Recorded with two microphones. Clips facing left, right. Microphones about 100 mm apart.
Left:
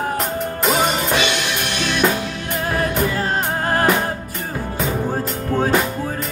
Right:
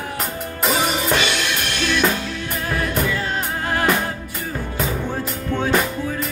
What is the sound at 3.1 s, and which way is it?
Music, 40° left (ahead or behind).